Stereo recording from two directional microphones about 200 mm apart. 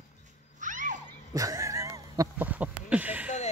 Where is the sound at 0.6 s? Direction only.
40° right (ahead or behind).